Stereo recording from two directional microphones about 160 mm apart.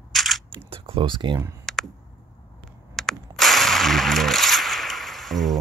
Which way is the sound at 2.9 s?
Centre (ahead or behind).